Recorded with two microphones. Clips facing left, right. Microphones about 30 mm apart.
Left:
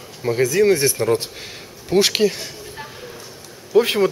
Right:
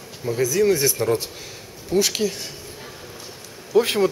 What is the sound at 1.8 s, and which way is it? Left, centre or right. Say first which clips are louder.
Speech: left 5 dB; left.